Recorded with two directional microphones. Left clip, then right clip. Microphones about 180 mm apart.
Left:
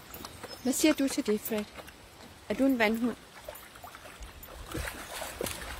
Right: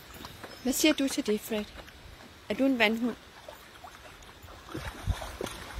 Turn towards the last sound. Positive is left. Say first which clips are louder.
# left 1 dB
turn(degrees=15)  # may be behind; listen again after turning